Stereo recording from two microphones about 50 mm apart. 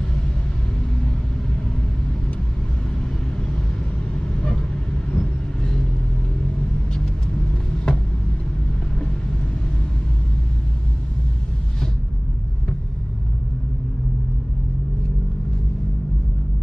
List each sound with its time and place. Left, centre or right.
4.1 s vehicle: centre
6.9 s vehicle: centre